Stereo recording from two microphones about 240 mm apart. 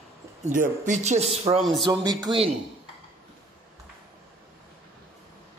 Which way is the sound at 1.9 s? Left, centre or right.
Centre.